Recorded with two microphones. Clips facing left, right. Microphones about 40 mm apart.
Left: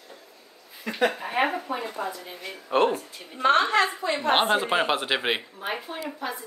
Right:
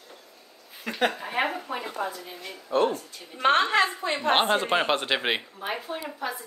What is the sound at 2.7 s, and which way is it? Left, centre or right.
Speech, left.